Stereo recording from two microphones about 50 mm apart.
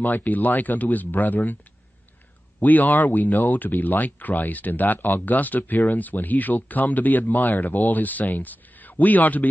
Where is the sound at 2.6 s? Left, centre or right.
Left.